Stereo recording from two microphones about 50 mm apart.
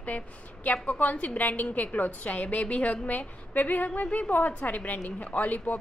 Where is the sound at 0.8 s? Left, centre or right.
Left.